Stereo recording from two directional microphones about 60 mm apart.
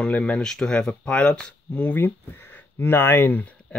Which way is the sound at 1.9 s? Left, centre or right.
Left.